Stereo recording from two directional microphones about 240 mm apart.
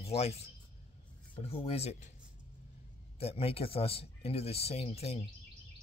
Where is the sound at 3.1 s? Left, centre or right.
Left.